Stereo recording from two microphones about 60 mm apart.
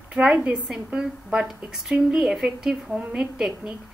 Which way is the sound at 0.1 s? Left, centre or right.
Centre.